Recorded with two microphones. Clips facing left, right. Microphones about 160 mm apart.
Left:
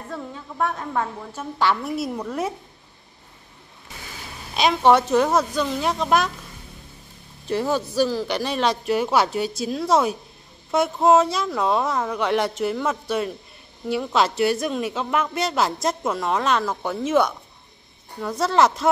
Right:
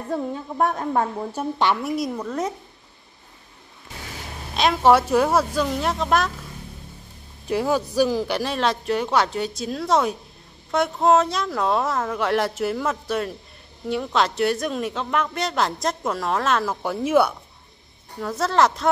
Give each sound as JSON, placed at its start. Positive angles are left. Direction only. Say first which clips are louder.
{"t": 0.1, "sound": "a woman's voice", "louder": "right 8 dB", "side_deg": -40}
{"t": 1.8, "sound": "a woman's voice", "louder": "right 1 dB", "side_deg": 0}
{"t": 4.6, "sound": "a woman's voice", "louder": "even", "side_deg": 0}
{"t": 7.4, "sound": "speech", "louder": "right 1 dB", "side_deg": -10}
{"t": 8.4, "sound": "a woman's voice", "louder": "left 1 dB", "side_deg": 0}